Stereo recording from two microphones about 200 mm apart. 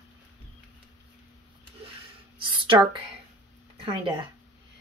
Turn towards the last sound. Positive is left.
turn(degrees=-25)  # may be behind; listen again after turning